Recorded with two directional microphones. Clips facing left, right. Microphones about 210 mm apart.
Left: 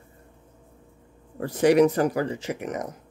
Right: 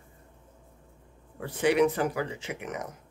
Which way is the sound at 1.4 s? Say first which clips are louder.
Left 6 dB; 40° left (ahead or behind).